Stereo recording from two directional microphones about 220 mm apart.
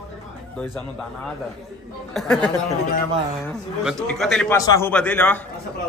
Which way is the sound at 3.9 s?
Centre (ahead or behind).